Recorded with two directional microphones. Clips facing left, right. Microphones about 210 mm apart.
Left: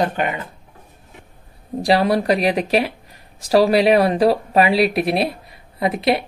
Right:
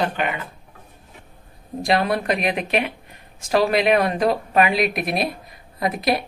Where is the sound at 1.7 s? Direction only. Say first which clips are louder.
Left 4 dB; 35° left (ahead or behind).